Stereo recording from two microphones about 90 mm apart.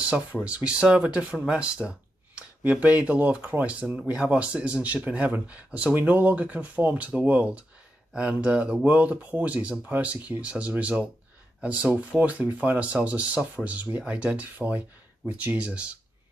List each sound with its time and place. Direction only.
0.0 s speech: 15° right (ahead or behind)